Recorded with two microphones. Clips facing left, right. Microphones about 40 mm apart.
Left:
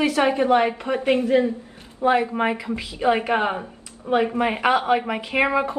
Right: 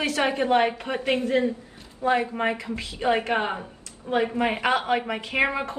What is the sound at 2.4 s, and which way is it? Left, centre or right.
Speech, centre.